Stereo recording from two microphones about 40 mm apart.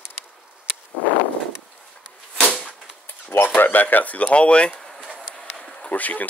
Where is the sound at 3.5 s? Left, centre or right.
Left.